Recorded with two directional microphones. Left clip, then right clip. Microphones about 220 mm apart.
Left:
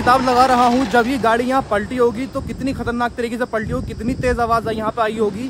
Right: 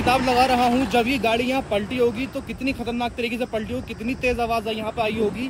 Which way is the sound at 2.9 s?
40° left (ahead or behind).